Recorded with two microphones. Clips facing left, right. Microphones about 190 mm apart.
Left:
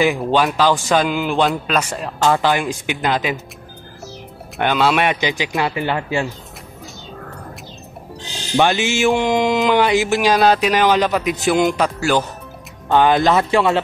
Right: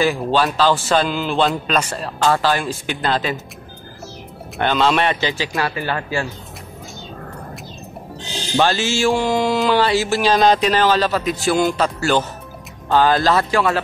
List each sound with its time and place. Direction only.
0.0 s music: 15° left (ahead or behind)
4.6 s music: 10° left (ahead or behind)
8.5 s music: 20° left (ahead or behind)
12.9 s speech: 20° left (ahead or behind)